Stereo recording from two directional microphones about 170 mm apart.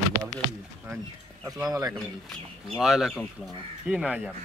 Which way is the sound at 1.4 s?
20° right (ahead or behind).